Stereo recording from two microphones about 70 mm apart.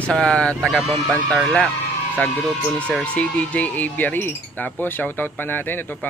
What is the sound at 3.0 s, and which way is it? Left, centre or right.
Speech, centre.